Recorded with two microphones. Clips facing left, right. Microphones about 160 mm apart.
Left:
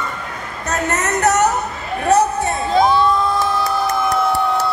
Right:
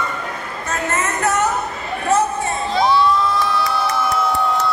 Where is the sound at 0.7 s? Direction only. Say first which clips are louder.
Left 2 dB; 40° left (ahead or behind).